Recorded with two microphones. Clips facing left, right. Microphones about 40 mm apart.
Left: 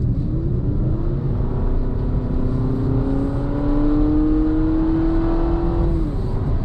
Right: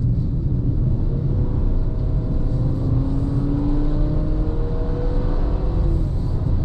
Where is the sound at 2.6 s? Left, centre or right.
Left.